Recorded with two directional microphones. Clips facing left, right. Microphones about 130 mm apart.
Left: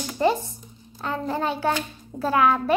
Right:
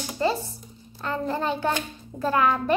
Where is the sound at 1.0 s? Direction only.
10° left (ahead or behind).